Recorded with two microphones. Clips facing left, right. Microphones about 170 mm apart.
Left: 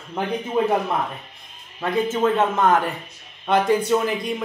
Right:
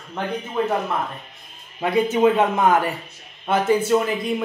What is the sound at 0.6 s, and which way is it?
Speech, 20° left (ahead or behind).